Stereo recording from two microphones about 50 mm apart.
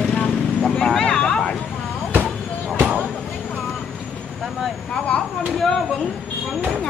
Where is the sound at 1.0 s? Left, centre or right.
Centre.